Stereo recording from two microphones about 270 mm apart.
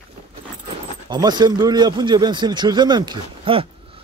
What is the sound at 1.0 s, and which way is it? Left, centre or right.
A man's voice, centre.